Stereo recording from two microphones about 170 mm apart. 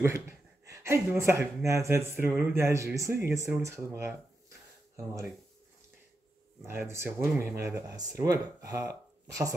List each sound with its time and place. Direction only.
0.7 s speech: 15° right (ahead or behind)
6.6 s speech: 15° right (ahead or behind)